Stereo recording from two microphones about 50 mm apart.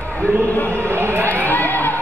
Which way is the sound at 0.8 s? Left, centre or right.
Right.